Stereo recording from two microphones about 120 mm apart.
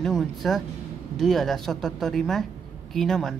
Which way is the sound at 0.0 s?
Centre (ahead or behind).